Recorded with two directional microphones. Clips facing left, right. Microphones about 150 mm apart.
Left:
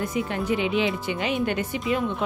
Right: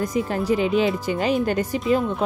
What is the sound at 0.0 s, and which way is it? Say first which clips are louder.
Speech: right 3 dB; 40° right (ahead or behind).